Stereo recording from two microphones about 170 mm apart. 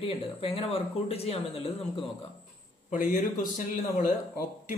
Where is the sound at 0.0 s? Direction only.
35° left (ahead or behind).